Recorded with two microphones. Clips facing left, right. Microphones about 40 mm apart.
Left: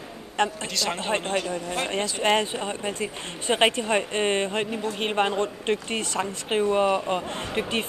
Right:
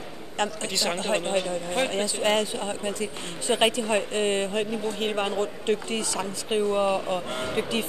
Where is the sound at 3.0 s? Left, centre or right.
Left.